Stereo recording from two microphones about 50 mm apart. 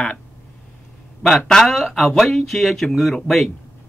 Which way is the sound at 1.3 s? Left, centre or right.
Centre.